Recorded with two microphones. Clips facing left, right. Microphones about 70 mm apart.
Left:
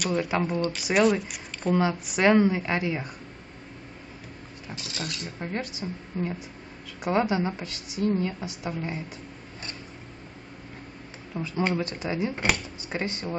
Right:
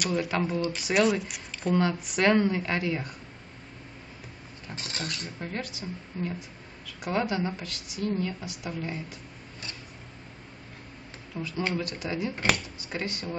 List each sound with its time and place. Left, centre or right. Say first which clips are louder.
0.0 s a woman's voice: left 2 dB; centre
4.7 s speech: even; right
5.4 s a woman's voice: left 4 dB; centre
11.3 s speech: left 3 dB; left